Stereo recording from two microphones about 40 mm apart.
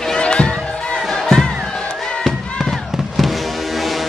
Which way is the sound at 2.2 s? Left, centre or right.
Centre.